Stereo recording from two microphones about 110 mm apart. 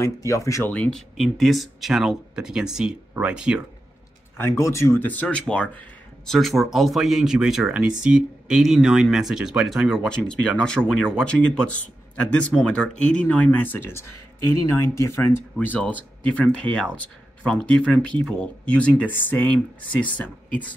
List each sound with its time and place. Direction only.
0.0 s speech: 30° left (ahead or behind)
0.7 s speech: 10° left (ahead or behind); by 3.6 s 10° right (ahead or behind)
4.4 s speech: 25° left (ahead or behind)